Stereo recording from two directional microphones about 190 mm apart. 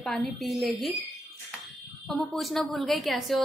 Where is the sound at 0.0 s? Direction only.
Centre (ahead or behind).